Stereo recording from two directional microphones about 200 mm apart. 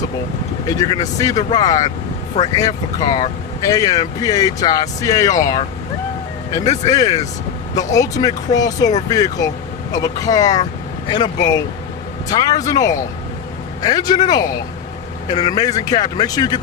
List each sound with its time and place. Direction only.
0.7 s speech: 20° left (ahead or behind)
6.9 s speech: 20° left (ahead or behind)